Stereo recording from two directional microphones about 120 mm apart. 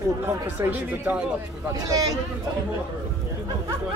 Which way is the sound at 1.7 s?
30° right (ahead or behind).